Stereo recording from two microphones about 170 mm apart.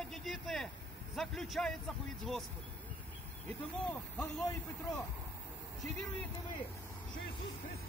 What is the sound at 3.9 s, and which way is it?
Speech, 5° left (ahead or behind).